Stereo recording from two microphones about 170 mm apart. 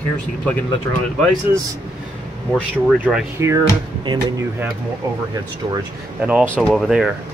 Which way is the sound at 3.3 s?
15° right (ahead or behind).